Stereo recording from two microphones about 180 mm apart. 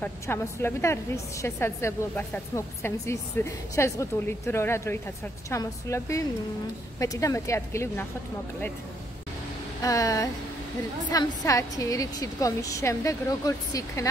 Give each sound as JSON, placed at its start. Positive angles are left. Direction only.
{"t": 0.0, "sound": "a woman's voice", "side_deg": 15}
{"t": 9.8, "sound": "a woman's voice", "side_deg": 20}